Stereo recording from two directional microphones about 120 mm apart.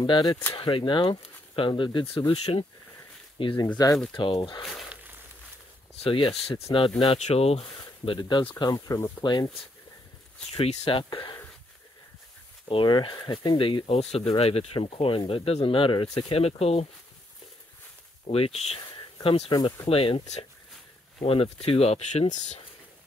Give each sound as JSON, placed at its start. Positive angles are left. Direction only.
{"t": 0.0, "sound": "speech", "side_deg": 40}
{"t": 3.7, "sound": "speech", "side_deg": 30}
{"t": 4.1, "sound": "speech", "side_deg": 45}
{"t": 4.6, "sound": "speech", "side_deg": 0}
{"t": 6.0, "sound": "speech", "side_deg": 45}
{"t": 7.0, "sound": "speech", "side_deg": 65}
{"t": 7.8, "sound": "speech", "side_deg": 40}
{"t": 10.5, "sound": "speech", "side_deg": 60}
{"t": 12.6, "sound": "speech", "side_deg": 40}
{"t": 18.2, "sound": "speech", "side_deg": 55}
{"t": 19.5, "sound": "speech", "side_deg": 35}
{"t": 19.9, "sound": "speech", "side_deg": 50}